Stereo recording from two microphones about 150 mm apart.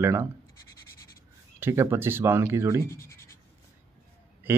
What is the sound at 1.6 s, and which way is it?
Speech, 15° right (ahead or behind).